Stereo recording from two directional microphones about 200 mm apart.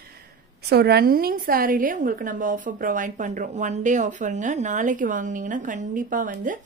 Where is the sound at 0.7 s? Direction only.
55° right (ahead or behind).